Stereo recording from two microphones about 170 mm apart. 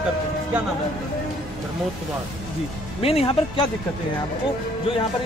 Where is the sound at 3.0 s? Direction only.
35° left (ahead or behind).